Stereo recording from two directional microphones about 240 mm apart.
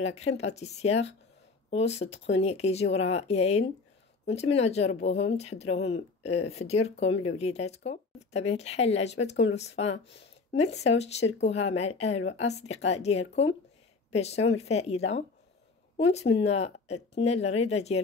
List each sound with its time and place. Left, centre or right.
0.0 s speech: left
16.1 s speech: left